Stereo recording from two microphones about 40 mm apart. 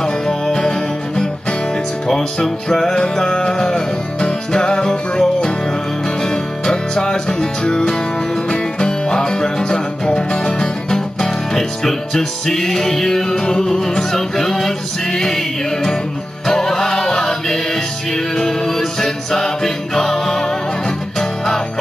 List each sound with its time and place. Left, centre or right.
0.0 s music: centre
3.0 s music: left
6.2 s music: centre